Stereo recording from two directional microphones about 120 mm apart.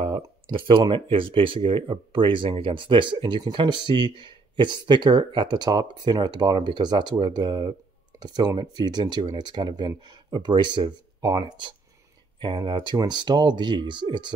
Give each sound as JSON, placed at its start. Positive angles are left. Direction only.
{"t": 0.0, "sound": "speech", "side_deg": -45}